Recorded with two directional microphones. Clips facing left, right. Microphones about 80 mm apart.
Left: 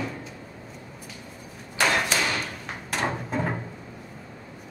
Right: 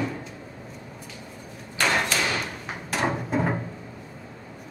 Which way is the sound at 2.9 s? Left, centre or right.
Centre.